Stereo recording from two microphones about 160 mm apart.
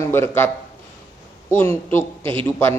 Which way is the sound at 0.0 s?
15° left (ahead or behind).